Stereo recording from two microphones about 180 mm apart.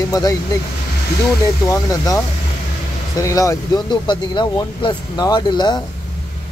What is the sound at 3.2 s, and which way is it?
Speech, 15° left (ahead or behind).